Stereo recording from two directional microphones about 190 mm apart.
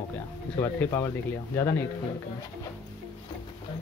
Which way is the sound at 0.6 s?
15° left (ahead or behind).